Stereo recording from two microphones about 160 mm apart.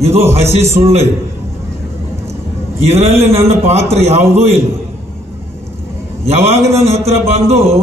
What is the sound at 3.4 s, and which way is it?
Speech, 40° right (ahead or behind).